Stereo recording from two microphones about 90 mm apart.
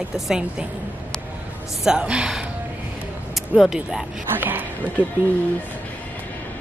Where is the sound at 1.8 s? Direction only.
10° right (ahead or behind).